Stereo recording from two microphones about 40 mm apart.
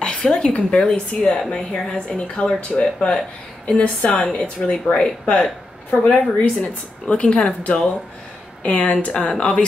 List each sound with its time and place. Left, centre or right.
0.0 s a sound: centre
0.5 s speech: left
4.3 s speech: centre
5.2 s speech: left
8.6 s speech: left
9.3 s speech: left